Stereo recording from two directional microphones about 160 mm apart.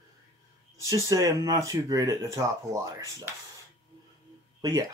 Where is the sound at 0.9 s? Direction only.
20° right (ahead or behind).